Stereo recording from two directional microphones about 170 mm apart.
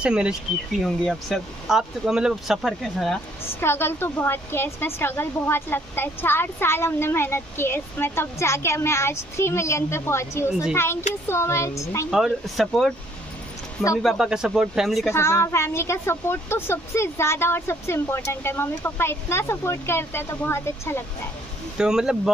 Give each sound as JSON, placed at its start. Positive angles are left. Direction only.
{"t": 0.0, "sound": "speech", "side_deg": -5}
{"t": 3.6, "sound": "speech", "side_deg": 15}
{"t": 12.1, "sound": "speech", "side_deg": 0}
{"t": 14.0, "sound": "speech", "side_deg": -5}
{"t": 15.0, "sound": "speech", "side_deg": 15}
{"t": 21.7, "sound": "speech", "side_deg": -5}